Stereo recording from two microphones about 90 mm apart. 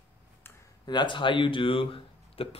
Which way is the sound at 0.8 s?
55° left (ahead or behind).